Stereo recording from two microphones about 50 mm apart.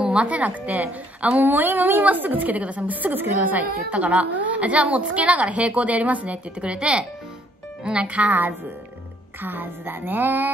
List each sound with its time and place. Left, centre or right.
0.0 s a woman's voice: right
1.4 s a woman's voice: right
9.4 s music: right